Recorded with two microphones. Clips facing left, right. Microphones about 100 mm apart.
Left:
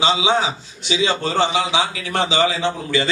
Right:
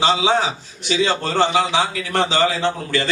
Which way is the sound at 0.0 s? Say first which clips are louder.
Right 1 dB; 50° right (ahead or behind).